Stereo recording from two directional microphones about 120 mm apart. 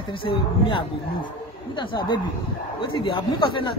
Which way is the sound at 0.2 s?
45° left (ahead or behind).